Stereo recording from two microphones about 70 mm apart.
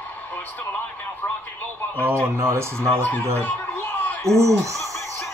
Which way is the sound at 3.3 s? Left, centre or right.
Left.